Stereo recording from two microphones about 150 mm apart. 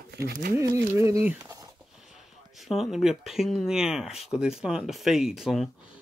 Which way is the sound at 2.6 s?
Centre (ahead or behind).